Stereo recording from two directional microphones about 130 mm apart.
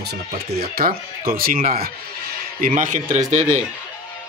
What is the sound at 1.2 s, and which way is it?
A man's voice, 90° right.